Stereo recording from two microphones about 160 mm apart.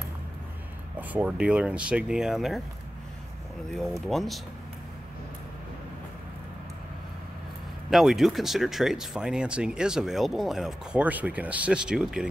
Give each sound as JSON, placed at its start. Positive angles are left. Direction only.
{"t": 0.9, "sound": "speech", "side_deg": -10}
{"t": 3.7, "sound": "speech", "side_deg": 0}
{"t": 7.9, "sound": "speech", "side_deg": 0}